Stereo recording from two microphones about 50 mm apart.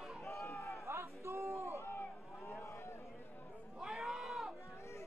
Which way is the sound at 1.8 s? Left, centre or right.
Left.